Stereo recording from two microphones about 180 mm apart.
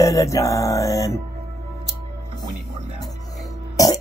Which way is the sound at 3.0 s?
20° left (ahead or behind).